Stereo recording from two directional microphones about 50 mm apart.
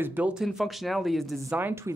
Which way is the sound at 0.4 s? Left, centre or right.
Centre.